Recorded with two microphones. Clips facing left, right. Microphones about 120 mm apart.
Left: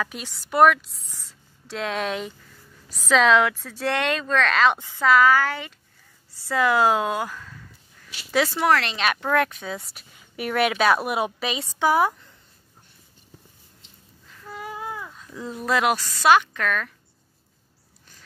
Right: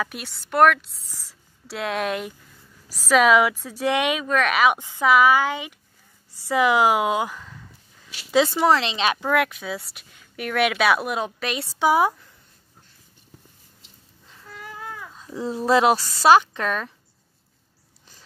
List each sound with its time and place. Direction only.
0.0 s a woman's voice: centre (ahead or behind); by 9.2 s 25° right (ahead or behind)
9.2 s speech: 5° right (ahead or behind)
11.8 s speech: 15° right (ahead or behind)
15.1 s speech: 30° right (ahead or behind)